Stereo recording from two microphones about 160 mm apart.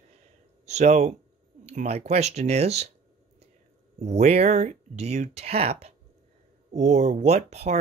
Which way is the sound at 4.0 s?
45° right (ahead or behind).